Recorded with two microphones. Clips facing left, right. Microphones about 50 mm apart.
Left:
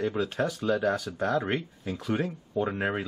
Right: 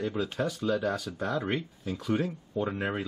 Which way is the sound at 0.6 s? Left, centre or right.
Centre.